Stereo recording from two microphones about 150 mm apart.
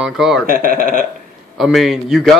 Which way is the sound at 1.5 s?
Centre (ahead or behind).